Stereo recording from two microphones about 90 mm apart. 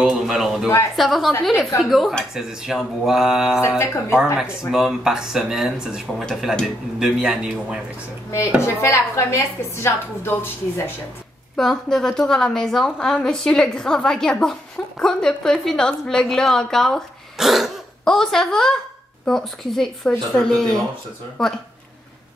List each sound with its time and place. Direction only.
0.0 s a woman's voice: 5° right (ahead or behind)
3.6 s speech: 30° left (ahead or behind)
4.4 s a woman's voice: 5° right (ahead or behind)
8.6 s a woman's voice: 35° left (ahead or behind)
11.5 s a woman's voice: 5° left (ahead or behind)